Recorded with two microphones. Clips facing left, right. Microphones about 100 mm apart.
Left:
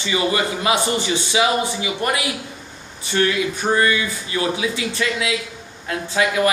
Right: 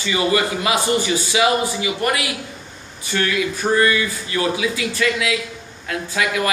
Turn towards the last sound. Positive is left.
turn(degrees=25)  # may be behind; listen again after turning